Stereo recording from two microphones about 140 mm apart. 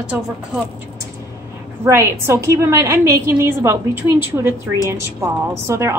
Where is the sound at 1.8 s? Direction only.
20° right (ahead or behind).